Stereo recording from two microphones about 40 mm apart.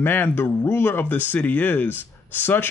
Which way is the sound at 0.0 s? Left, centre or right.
Left.